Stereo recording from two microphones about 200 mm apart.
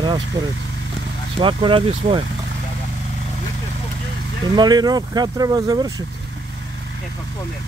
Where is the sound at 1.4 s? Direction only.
25° right (ahead or behind).